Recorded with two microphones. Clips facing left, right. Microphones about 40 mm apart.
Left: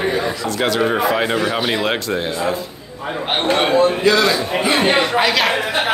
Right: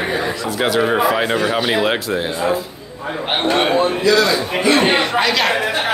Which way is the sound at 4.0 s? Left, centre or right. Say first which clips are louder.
Even; left.